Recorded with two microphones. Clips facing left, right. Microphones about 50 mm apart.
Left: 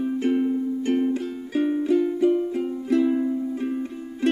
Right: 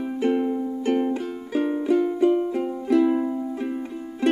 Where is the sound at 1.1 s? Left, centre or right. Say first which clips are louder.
Even; centre.